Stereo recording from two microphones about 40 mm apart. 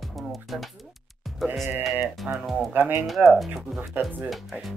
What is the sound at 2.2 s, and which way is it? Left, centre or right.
Speech, centre.